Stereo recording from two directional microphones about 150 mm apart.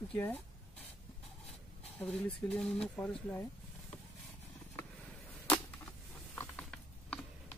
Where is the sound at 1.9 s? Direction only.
5° left (ahead or behind).